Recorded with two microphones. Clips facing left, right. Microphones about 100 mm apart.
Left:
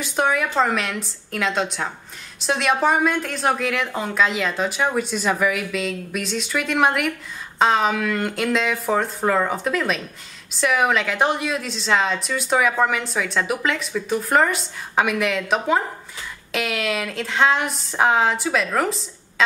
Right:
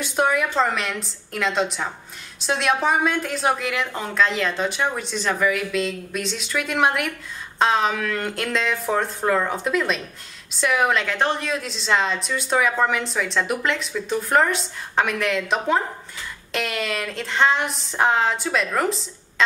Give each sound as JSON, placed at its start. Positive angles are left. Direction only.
{"t": 0.0, "sound": "a woman's voice", "side_deg": 0}